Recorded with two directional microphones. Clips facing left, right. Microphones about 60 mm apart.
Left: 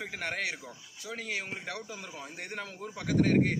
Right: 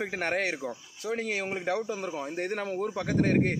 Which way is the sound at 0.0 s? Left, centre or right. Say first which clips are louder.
Right 6 dB; right.